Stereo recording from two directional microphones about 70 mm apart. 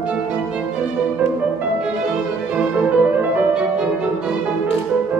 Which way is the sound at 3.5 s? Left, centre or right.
Centre.